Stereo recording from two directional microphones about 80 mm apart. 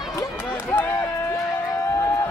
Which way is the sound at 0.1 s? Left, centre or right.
Left.